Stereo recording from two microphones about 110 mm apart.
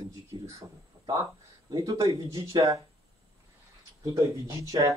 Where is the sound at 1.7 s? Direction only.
30° right (ahead or behind).